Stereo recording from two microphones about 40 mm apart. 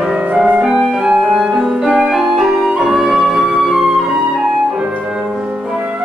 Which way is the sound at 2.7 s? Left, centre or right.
Centre.